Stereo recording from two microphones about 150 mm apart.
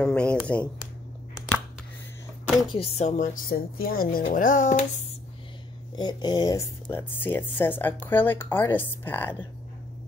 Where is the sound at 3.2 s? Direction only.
90° left; by 4.8 s 60° left (ahead or behind).